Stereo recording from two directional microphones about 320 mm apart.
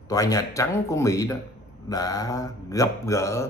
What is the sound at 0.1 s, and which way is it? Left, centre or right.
A man's voice, centre.